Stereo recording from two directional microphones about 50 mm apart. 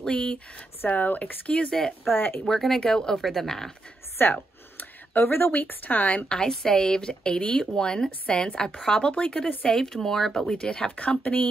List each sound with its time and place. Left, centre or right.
0.0 s speech: centre
0.8 s speech: left
1.7 s speech: centre
2.0 s speech: left
2.4 s speech: centre
3.2 s speech: centre
4.2 s a sound: left
5.5 s speech: left
6.3 s speech: centre
11.1 s speech: left